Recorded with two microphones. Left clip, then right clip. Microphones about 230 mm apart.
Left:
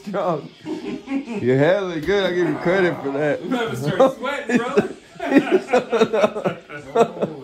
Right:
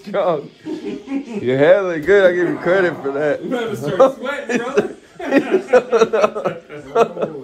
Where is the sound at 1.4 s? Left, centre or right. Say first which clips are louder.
Right 5 dB; left.